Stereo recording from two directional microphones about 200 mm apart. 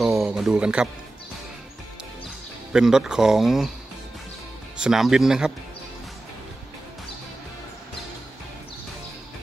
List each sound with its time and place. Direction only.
0.0 s speech: centre (ahead or behind)
2.7 s speech: 5° right (ahead or behind)
4.7 s speech: 5° right (ahead or behind)